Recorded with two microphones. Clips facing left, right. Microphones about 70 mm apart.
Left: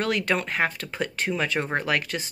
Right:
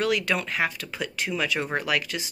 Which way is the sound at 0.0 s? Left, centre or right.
Left.